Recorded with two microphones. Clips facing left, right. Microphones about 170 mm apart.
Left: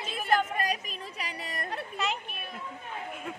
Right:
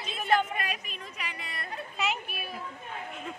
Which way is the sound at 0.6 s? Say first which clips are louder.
Left 4 dB; 35° left (ahead or behind).